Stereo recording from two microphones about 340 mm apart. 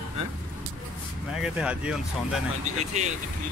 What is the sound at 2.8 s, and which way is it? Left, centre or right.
Speech, right.